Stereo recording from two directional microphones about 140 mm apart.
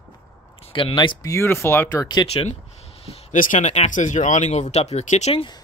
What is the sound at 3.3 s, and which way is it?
Speech, 70° left (ahead or behind).